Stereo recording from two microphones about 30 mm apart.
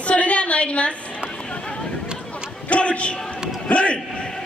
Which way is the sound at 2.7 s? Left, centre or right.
Left.